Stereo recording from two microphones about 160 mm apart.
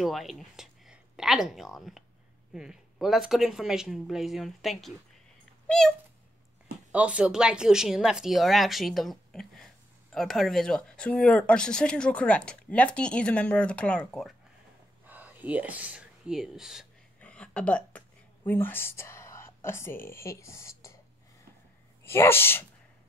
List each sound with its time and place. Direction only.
0.0 s speech: centre (ahead or behind)
6.9 s speech: 10° right (ahead or behind)
15.0 s speech: 10° right (ahead or behind)
17.2 s a sound: 5° left (ahead or behind)
22.0 s speech: 15° left (ahead or behind)